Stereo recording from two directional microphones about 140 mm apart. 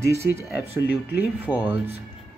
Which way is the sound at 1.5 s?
30° left (ahead or behind).